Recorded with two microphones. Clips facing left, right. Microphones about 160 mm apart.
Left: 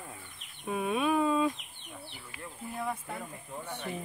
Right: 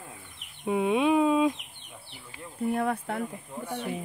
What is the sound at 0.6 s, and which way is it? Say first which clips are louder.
Speech: right 6 dB; 20° right (ahead or behind).